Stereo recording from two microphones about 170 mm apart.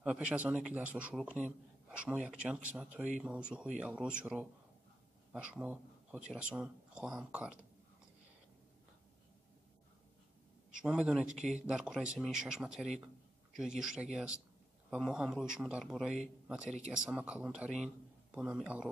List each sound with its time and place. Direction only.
0.0 s a man's voice: 5° right (ahead or behind)
10.8 s speech: 5° right (ahead or behind)
11.2 s speech: 45° right (ahead or behind)
11.6 s a man's voice: 5° right (ahead or behind)